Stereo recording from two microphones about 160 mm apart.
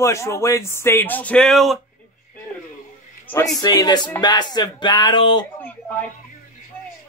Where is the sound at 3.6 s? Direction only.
25° left (ahead or behind).